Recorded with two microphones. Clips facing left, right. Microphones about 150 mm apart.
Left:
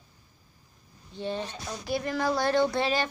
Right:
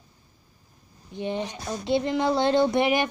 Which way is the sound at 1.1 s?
15° right (ahead or behind).